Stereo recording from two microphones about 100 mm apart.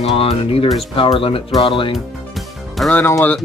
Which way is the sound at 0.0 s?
85° left.